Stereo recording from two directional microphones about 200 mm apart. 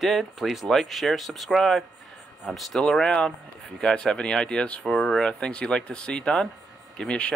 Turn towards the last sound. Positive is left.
turn(degrees=5)  # may be behind; listen again after turning